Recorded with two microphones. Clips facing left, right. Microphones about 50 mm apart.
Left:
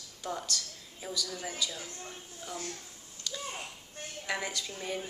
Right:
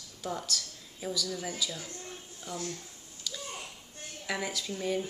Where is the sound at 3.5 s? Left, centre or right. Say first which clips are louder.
Left 1 dB; left.